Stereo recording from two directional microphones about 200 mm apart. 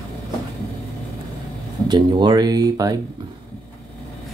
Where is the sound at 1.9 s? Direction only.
20° right (ahead or behind).